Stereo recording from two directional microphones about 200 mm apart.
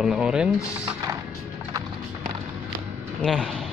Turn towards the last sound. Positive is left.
turn(degrees=0)  # may be behind; listen again after turning